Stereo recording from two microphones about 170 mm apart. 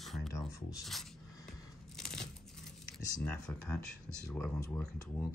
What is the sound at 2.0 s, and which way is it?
Tearing, 5° left (ahead or behind).